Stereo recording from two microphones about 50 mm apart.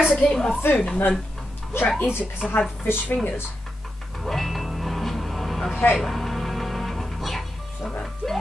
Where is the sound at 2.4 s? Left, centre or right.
Centre.